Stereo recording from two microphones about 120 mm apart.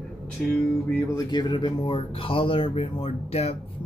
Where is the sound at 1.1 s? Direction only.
35° left (ahead or behind); by 3.5 s 60° left (ahead or behind).